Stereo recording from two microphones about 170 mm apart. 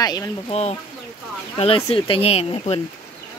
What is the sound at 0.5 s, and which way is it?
Speech, 40° left (ahead or behind).